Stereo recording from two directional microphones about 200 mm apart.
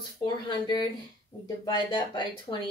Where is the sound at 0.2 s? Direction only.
20° left (ahead or behind).